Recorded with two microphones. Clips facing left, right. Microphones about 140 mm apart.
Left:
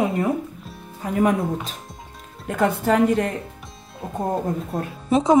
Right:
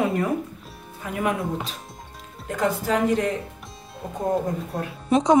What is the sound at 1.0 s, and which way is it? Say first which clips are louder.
Speech: left 5 dB; 40° left (ahead or behind).